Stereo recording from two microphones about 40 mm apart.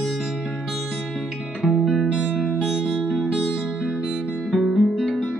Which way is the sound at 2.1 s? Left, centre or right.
Right.